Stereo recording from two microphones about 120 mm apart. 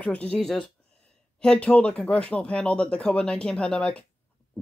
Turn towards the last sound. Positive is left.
turn(degrees=10)  # may be behind; listen again after turning